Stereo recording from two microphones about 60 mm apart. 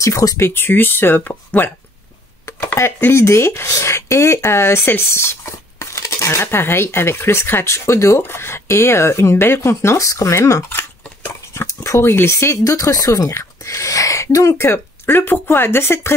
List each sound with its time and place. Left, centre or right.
0.0 s speech: left
0.4 s speech: left
2.4 s a sound: left
3.2 s speech: left
6.4 s speech: left
8.2 s speech: left
9.9 s speech: left
12.7 s speech: left
13.3 s speech: left